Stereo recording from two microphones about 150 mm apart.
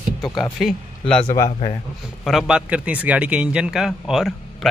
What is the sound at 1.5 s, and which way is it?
Speech, 40° left (ahead or behind).